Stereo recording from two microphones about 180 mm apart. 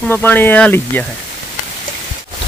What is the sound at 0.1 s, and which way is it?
Speech, 10° left (ahead or behind).